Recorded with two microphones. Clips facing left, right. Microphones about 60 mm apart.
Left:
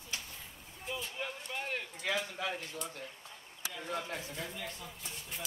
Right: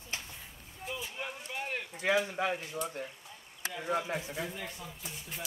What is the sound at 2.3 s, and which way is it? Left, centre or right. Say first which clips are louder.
Speech: right 6 dB; right.